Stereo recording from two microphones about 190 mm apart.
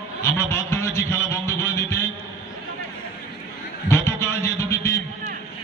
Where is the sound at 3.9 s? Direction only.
15° left (ahead or behind).